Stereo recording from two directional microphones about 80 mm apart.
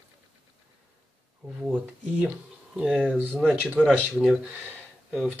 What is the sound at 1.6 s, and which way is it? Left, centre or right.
Speech, centre.